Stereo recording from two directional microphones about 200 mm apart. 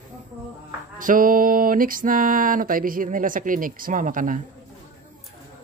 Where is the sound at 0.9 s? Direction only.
40° right (ahead or behind).